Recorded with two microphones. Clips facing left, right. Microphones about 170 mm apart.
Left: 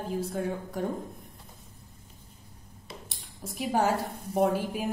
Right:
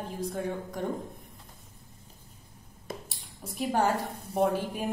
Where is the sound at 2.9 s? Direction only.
50° right (ahead or behind).